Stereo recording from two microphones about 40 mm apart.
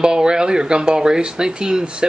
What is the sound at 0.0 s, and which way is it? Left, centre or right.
A man's voice, centre.